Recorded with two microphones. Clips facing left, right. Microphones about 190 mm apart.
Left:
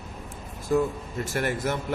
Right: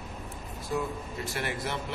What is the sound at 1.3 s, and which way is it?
Speech, 45° left (ahead or behind).